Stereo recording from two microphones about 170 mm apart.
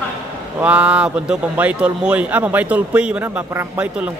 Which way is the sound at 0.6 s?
10° right (ahead or behind).